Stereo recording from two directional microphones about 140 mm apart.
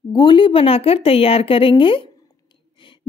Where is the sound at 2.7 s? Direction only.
35° left (ahead or behind).